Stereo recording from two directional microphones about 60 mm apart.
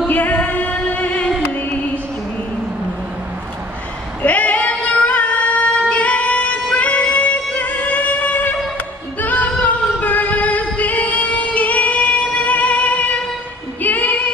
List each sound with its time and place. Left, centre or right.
0.1 s music: left
4.2 s female singing: left